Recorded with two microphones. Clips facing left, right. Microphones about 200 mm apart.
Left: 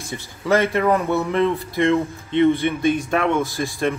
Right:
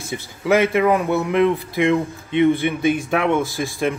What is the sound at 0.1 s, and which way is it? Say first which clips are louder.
Speech: right 2 dB; 10° right (ahead or behind).